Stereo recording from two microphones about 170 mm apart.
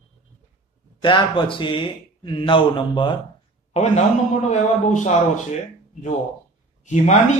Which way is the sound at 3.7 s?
40° left (ahead or behind).